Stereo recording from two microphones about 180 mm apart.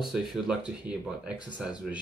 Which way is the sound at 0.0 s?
Centre (ahead or behind).